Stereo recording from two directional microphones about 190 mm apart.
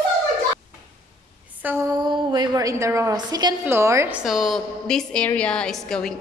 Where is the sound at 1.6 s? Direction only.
10° right (ahead or behind).